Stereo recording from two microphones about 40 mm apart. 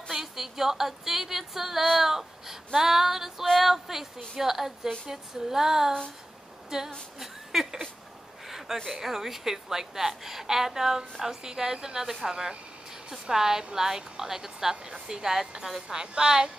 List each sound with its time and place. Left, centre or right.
0.1 s a woman's voice: centre
8.5 s a sound: centre
8.9 s a woman's voice: centre